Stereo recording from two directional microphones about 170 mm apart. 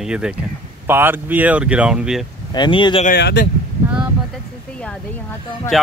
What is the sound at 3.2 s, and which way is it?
Speech, 75° left (ahead or behind).